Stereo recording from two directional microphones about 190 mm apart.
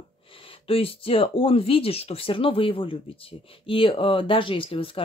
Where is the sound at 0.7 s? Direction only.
30° left (ahead or behind).